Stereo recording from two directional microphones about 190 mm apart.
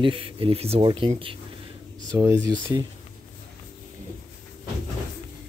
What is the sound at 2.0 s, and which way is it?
Speech, 20° right (ahead or behind).